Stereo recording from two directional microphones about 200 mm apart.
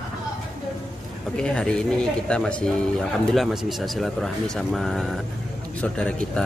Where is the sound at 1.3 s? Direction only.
5° left (ahead or behind).